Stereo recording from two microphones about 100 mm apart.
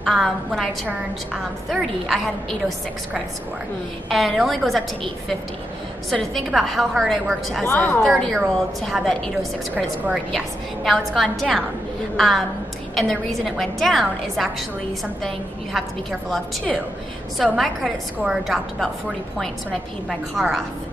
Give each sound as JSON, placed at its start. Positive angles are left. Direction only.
{"t": 0.0, "sound": "a woman's voice", "side_deg": 0}
{"t": 4.1, "sound": "a woman's voice", "side_deg": 0}
{"t": 7.6, "sound": "a woman's voice", "side_deg": 20}
{"t": 8.2, "sound": "a woman's voice", "side_deg": 5}